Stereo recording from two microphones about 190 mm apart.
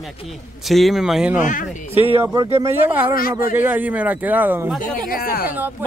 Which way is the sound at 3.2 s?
50° left (ahead or behind).